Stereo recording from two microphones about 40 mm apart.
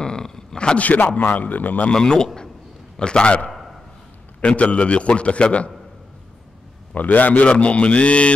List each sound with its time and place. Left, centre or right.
0.0 s a sound: centre
0.7 s a man's voice: left
1.9 s a man's voice: centre
3.5 s a sound: centre
4.4 s a man's voice: left
6.9 s a man's voice: left